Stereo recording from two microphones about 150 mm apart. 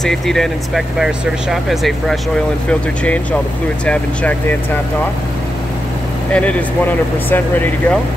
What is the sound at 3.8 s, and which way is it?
Speech, 10° left (ahead or behind).